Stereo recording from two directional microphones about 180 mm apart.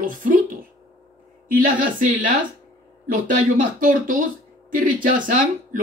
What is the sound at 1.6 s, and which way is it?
A man's voice, 50° right (ahead or behind).